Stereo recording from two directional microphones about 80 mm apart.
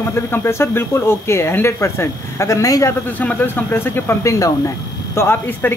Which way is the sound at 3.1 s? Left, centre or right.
Left.